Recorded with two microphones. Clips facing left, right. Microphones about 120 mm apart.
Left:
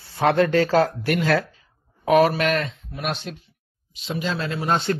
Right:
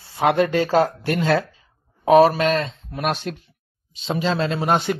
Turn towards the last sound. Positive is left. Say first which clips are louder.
# right 3 dB
turn(degrees=-15)  # may be behind; listen again after turning